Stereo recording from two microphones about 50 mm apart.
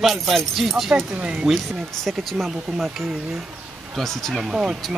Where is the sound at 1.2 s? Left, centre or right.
Centre.